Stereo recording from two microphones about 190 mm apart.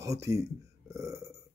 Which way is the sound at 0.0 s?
15° right (ahead or behind).